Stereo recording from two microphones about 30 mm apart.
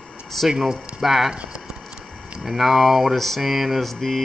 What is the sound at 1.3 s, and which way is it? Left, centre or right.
Speech, right.